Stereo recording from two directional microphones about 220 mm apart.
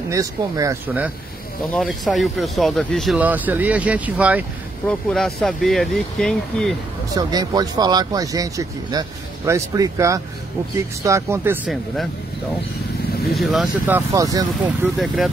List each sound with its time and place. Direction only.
0.1 s speech: 15° right (ahead or behind); by 6.7 s centre (ahead or behind)
7.2 s speech: 15° right (ahead or behind)
13.3 s speech: centre (ahead or behind); by 14.9 s 15° right (ahead or behind)